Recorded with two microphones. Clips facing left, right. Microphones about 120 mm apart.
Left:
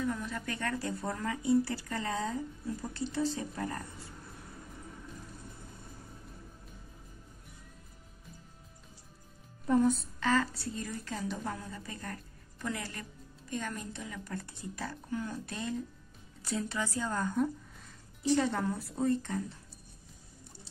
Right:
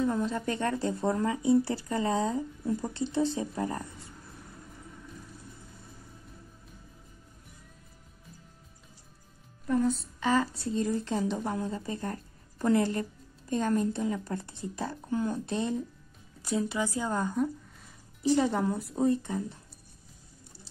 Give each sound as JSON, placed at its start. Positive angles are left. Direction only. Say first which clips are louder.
{"t": 0.0, "sound": "speech", "louder": "right 7 dB", "side_deg": -25}
{"t": 10.2, "sound": "speech", "louder": "right 3 dB", "side_deg": -15}